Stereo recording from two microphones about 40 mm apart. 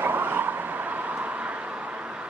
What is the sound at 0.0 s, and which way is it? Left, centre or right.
Vehicle, right.